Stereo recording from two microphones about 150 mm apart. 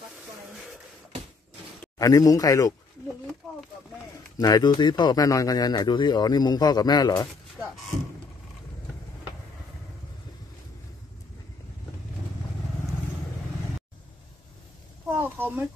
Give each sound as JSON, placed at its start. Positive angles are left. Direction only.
{"t": 2.0, "sound": "a man's voice", "side_deg": 25}
{"t": 4.4, "sound": "a man's voice", "side_deg": 25}
{"t": 7.6, "sound": "speech", "side_deg": -25}
{"t": 15.0, "sound": "a child's voice", "side_deg": -15}